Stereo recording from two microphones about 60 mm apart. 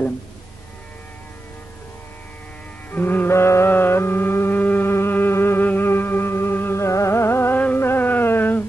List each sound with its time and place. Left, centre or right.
2.9 s music: left
3.3 s music: left
7.5 s music: left